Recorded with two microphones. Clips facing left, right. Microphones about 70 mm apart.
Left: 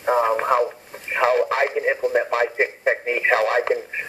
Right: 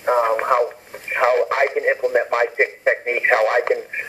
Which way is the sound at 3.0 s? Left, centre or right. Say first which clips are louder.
Right 2 dB; right.